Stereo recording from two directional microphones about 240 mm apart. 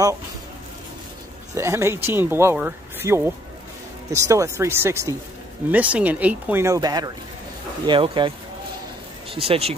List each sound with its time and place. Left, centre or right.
1.5 s speech: centre
9.4 s speech: right